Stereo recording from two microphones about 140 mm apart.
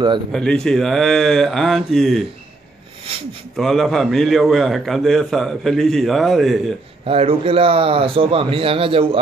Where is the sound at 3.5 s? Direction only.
Centre (ahead or behind).